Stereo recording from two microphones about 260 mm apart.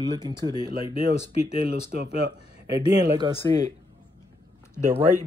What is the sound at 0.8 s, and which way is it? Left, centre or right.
Speech, left.